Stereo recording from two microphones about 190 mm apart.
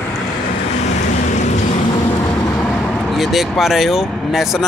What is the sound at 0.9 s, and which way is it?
Vehicle, 40° left (ahead or behind).